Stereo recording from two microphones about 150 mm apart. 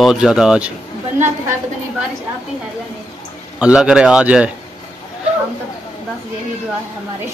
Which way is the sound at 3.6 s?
5° right (ahead or behind).